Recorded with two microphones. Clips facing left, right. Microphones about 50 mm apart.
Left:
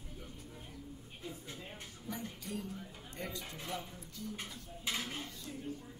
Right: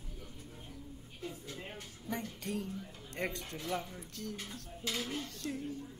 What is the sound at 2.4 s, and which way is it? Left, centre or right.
Speech, right.